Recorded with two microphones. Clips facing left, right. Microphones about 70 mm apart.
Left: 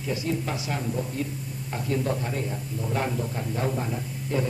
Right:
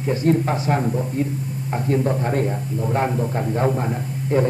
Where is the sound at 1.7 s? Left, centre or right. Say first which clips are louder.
Right 6 dB; right.